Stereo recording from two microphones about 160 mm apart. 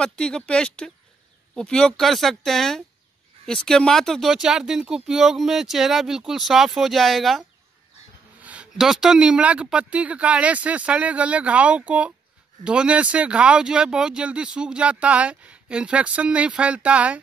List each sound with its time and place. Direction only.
0.0 s speech: 5° left (ahead or behind)